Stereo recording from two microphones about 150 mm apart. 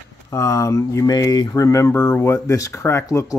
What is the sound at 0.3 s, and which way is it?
Speech, 20° left (ahead or behind).